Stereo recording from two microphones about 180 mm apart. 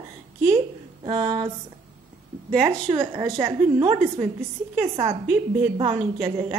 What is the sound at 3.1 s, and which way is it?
A woman's voice, 20° right (ahead or behind).